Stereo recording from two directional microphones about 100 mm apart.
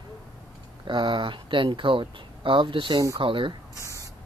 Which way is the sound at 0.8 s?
55° right (ahead or behind).